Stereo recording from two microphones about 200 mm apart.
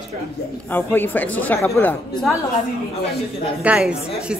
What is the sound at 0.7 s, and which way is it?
Speech, 10° left (ahead or behind).